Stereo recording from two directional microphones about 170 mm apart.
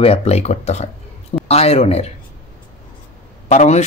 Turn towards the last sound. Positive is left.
turn(degrees=40)  # may be behind; listen again after turning